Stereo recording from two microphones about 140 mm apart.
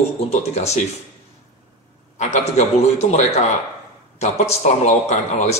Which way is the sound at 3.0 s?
55° left (ahead or behind).